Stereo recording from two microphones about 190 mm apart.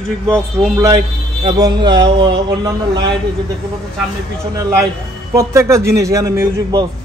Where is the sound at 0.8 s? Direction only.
25° right (ahead or behind).